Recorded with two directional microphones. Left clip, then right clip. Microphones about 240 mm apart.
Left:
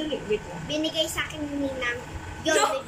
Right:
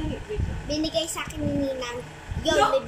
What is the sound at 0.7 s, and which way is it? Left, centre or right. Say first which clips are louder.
Speech: even; centre.